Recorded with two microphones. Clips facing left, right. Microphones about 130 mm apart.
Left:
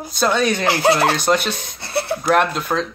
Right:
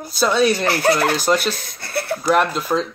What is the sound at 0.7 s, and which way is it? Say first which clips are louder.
Speech: left 1 dB; 25° left (ahead or behind).